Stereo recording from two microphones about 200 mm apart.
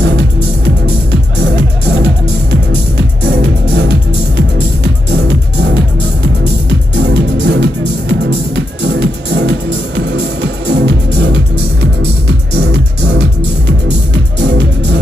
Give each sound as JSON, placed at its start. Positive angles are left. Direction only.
{"t": 1.4, "sound": "music", "side_deg": -60}
{"t": 3.3, "sound": "music", "side_deg": -55}